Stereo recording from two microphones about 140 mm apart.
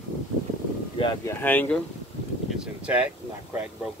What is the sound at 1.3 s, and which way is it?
Speech, 15° left (ahead or behind).